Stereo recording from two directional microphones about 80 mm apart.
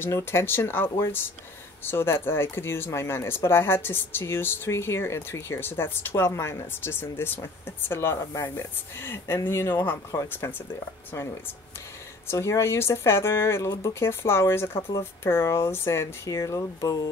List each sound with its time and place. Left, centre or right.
0.0 s speech: left
12.3 s speech: left
13.7 s speech: left
14.0 s speech: left